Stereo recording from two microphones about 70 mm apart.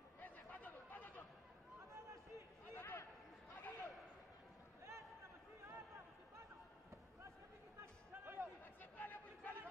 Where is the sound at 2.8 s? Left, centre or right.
Left.